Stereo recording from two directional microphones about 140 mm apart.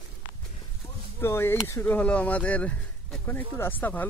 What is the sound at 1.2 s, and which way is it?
Speech, 15° left (ahead or behind).